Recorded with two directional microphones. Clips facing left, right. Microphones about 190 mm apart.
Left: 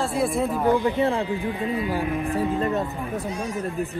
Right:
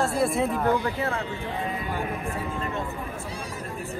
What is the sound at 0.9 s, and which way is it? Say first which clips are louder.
A man's voice: left 6 dB; 30° left (ahead or behind).